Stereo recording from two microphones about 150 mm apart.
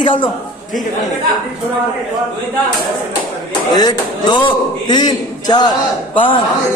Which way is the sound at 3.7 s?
25° left (ahead or behind).